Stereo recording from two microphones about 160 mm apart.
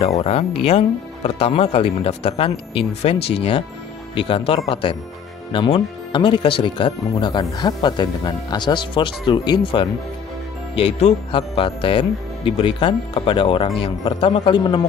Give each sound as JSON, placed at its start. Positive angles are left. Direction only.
{"t": 0.2, "sound": "speech", "side_deg": 35}